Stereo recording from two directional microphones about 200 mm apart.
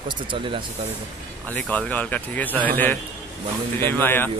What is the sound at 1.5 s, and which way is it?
A man's voice, 5° left (ahead or behind).